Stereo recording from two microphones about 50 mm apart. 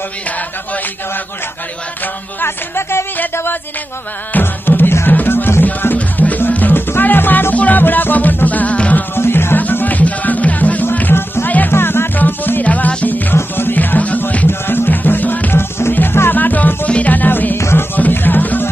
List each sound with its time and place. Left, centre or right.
2.4 s music: left
4.3 s music: left
9.1 s music: left
9.6 s music: left
11.7 s music: left
12.6 s music: left
13.4 s music: left
13.7 s music: left
17.6 s music: left
17.9 s music: left